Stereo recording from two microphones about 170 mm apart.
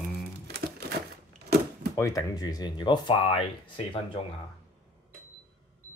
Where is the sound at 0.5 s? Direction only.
70° right (ahead or behind).